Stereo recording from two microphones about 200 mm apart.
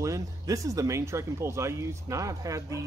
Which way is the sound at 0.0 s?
15° right (ahead or behind).